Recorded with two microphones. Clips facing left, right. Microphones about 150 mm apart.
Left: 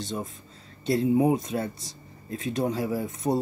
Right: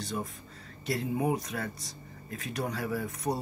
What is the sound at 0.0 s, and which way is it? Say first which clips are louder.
Speech: left 3 dB; 25° left (ahead or behind).